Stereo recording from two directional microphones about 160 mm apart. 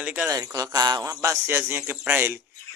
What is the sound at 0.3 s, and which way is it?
Speech, 20° right (ahead or behind).